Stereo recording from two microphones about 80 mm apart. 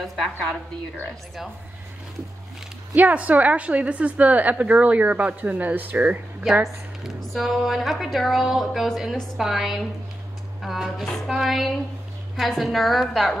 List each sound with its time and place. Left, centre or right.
0.0 s a woman's voice: centre
2.9 s a woman's voice: centre
6.5 s a woman's voice: centre